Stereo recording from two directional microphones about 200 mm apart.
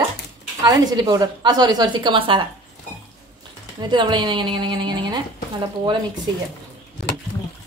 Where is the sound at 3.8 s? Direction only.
25° right (ahead or behind).